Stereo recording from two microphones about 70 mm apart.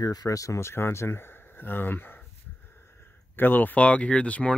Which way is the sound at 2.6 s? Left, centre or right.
Left.